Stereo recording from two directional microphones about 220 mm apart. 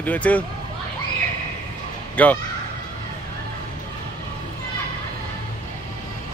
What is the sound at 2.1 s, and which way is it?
Speech, 5° left (ahead or behind).